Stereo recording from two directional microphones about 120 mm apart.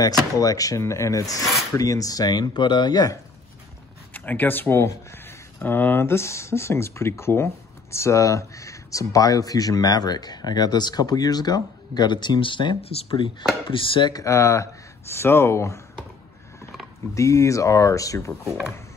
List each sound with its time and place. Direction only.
0.0 s speech: 30° left (ahead or behind)
4.1 s speech: 15° left (ahead or behind); by 14.1 s 45° left (ahead or behind)
14.1 s speech: 25° left (ahead or behind)
17.1 s speech: 25° left (ahead or behind)